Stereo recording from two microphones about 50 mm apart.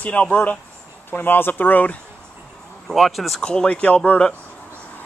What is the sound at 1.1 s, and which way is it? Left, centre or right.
Speech, left.